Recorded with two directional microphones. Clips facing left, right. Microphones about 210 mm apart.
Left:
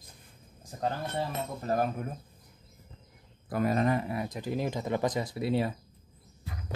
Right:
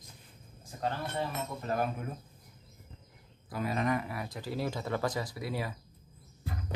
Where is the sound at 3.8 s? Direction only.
30° left (ahead or behind).